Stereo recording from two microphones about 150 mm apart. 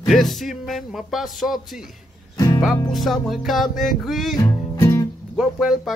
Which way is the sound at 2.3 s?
25° left (ahead or behind).